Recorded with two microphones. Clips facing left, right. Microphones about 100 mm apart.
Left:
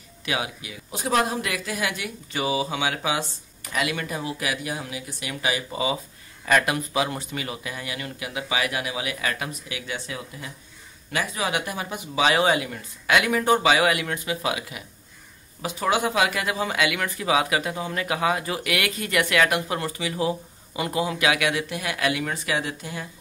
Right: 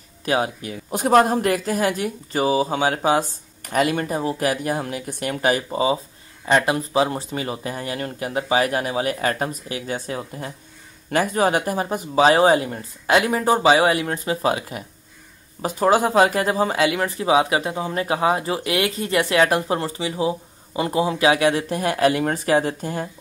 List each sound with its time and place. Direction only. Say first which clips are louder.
0.2 s speech: right 7 dB; 40° right (ahead or behind)
5.7 s speech: right 6 dB; 35° right (ahead or behind)